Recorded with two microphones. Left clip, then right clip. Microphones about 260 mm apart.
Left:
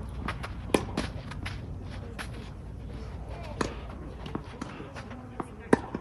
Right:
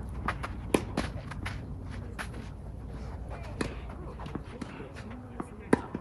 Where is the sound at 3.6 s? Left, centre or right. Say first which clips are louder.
Left 4 dB; centre.